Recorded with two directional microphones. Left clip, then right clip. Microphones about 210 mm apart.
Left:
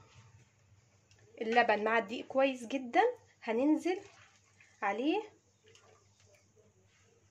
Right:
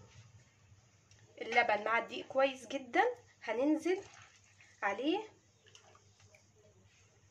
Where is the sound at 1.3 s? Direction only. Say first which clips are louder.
Left 3 dB; 30° left (ahead or behind).